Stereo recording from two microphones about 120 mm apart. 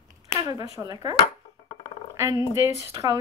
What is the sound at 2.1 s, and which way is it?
A woman's voice, 25° right (ahead or behind).